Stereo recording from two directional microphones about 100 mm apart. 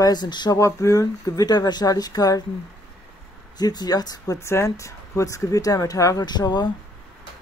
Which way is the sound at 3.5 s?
40° left (ahead or behind).